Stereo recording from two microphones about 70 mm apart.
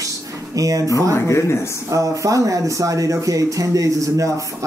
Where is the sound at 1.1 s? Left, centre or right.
Left.